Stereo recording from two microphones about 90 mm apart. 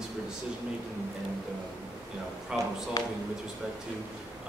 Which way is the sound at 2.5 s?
10° right (ahead or behind).